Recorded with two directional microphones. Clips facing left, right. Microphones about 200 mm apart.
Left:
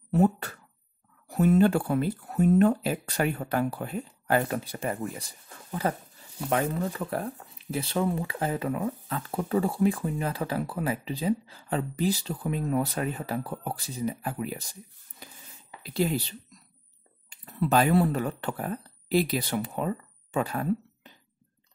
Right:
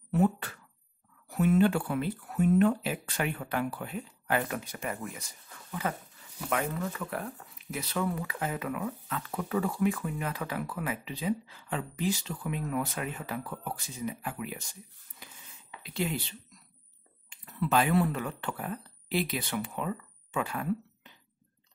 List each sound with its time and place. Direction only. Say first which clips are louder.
0.1 s speech: left 3 dB; 40° left (ahead or behind)